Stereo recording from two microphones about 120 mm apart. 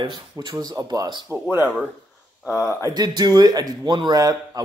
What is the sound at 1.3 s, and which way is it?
Speech, 20° right (ahead or behind).